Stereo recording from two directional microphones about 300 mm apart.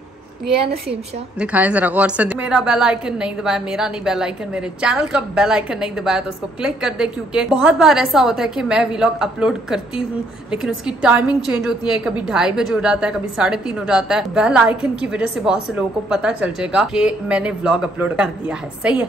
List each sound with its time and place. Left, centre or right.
1.4 s a woman's voice: centre